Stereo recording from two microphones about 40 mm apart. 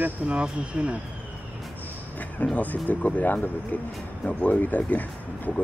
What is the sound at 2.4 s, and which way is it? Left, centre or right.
Speech, left.